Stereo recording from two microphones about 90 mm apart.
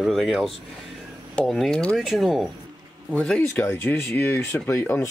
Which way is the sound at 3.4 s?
30° left (ahead or behind).